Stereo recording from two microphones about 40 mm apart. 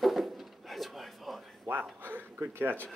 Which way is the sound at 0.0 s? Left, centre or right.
Centre.